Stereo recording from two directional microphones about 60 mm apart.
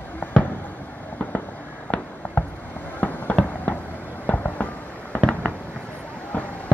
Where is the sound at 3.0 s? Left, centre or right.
Left.